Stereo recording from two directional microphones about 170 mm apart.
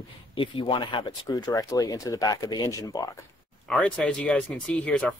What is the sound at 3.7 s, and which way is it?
Speech, 5° left (ahead or behind).